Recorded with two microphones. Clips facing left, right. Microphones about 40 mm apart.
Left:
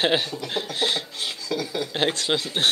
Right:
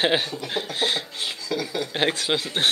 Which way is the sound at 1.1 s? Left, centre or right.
Right.